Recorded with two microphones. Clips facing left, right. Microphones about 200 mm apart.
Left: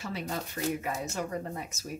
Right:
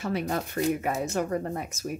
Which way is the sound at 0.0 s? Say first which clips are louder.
Right 7 dB; 55° right (ahead or behind).